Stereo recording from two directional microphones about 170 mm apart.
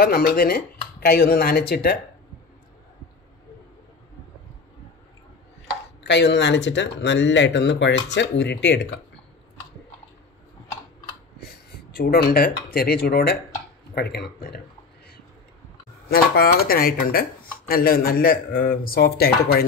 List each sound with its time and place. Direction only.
0.0 s speech: 60° left (ahead or behind)
5.7 s speech: 85° left
11.7 s speech: 65° left (ahead or behind)
16.1 s speech: 60° left (ahead or behind)